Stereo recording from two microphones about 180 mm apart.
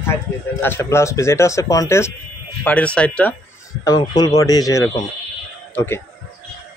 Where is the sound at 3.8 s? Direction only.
20° left (ahead or behind).